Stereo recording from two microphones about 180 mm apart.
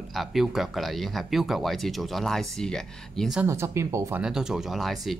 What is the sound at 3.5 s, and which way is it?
Speech, 15° right (ahead or behind).